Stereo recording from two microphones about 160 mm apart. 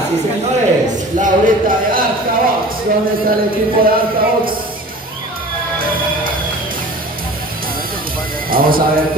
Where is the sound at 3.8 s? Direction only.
65° right (ahead or behind).